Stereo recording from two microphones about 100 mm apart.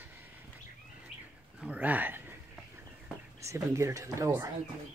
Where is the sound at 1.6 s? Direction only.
15° right (ahead or behind).